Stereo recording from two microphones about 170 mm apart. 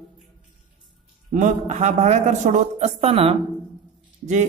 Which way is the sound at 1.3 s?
50° right (ahead or behind).